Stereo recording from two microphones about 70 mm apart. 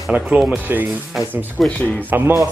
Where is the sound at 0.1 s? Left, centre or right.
Right.